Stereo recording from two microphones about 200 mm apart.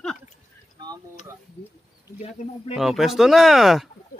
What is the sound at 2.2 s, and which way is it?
Speech, 30° left (ahead or behind).